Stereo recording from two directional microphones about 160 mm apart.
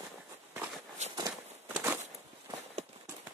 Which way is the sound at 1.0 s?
45° right (ahead or behind).